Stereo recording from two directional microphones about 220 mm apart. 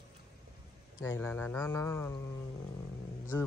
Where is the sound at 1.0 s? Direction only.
10° left (ahead or behind).